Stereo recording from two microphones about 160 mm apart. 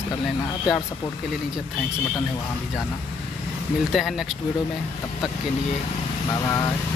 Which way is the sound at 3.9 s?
Centre (ahead or behind).